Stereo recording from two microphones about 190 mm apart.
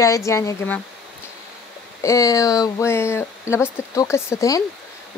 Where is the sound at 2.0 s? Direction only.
15° left (ahead or behind).